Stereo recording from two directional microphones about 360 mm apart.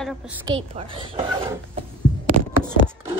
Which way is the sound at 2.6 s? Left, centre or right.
Centre.